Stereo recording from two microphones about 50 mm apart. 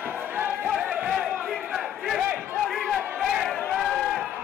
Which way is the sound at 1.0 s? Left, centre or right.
Centre.